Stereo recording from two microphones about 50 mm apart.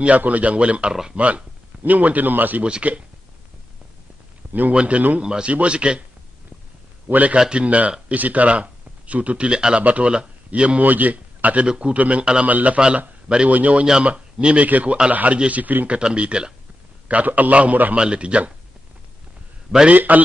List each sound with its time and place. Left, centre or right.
0.2 s speech: right
2.6 s speech: right
4.5 s speech: right
4.7 s speech: right
5.2 s speech: centre
7.1 s speech: right
7.3 s speech: centre
9.5 s speech: centre
9.8 s speech: right
10.8 s speech: right
11.6 s speech: centre; by 15.9 s right
16.0 s speech: centre
17.9 s speech: centre
19.9 s speech: right